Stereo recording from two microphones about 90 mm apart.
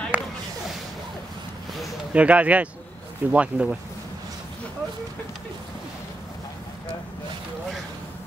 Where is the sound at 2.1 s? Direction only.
15° right (ahead or behind).